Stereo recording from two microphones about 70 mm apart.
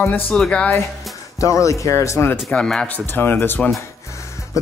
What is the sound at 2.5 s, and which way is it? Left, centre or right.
Speech, centre.